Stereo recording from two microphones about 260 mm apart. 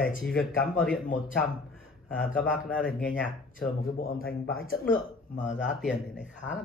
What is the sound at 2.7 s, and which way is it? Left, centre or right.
Speech, centre.